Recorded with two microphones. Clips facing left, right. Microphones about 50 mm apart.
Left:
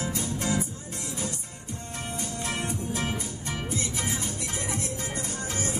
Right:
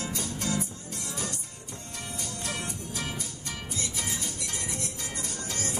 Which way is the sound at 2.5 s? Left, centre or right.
Left.